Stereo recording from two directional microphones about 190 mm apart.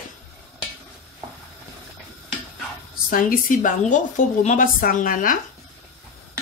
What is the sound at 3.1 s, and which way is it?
A woman's voice, 45° left (ahead or behind).